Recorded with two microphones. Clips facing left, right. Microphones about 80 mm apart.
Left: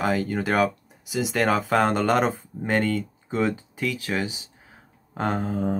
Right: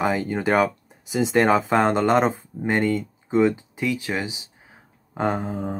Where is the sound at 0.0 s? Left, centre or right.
Right.